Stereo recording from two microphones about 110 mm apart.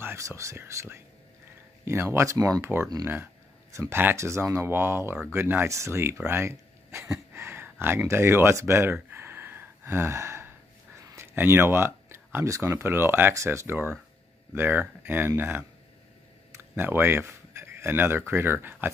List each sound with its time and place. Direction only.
0.0 s speech: 20° right (ahead or behind)
7.3 s a sound: 20° right (ahead or behind)
11.3 s speech: 25° right (ahead or behind)